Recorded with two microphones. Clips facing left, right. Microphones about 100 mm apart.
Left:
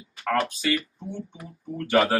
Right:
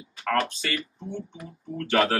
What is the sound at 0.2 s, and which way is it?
Speech, 10° left (ahead or behind).